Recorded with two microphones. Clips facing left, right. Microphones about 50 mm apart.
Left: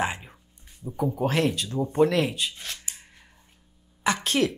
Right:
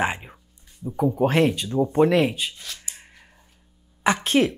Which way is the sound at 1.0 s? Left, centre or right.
Centre.